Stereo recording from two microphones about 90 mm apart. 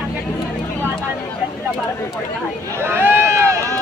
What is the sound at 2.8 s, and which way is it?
Run, 25° right (ahead or behind).